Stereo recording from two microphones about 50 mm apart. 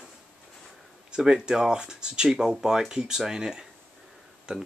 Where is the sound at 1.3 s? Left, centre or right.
Centre.